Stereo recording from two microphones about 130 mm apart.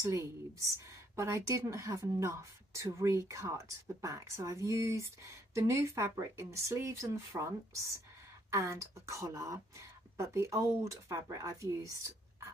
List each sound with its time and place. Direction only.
0.0 s a woman's voice: 25° right (ahead or behind)